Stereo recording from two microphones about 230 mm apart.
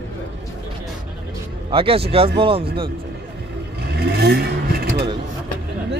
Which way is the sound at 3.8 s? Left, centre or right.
Right.